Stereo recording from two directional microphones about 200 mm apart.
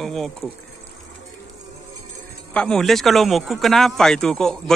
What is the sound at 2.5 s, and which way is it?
Speech, 5° left (ahead or behind).